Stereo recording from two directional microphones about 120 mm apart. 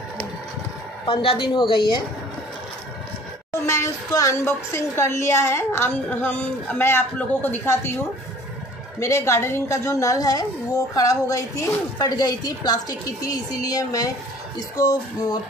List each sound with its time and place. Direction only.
1.0 s a woman's voice: 50° left (ahead or behind)
3.6 s a woman's voice: 25° left (ahead or behind)
9.0 s a woman's voice: 25° left (ahead or behind)